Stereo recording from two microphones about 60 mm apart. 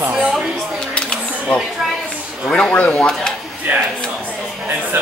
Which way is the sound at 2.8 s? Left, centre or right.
Left.